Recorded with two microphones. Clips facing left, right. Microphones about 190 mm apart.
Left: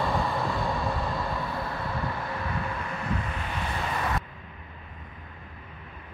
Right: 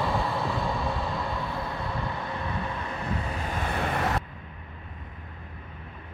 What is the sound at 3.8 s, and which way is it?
Vehicle, 60° right (ahead or behind).